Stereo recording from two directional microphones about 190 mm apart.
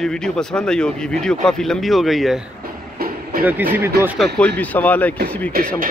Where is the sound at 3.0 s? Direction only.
50° right (ahead or behind).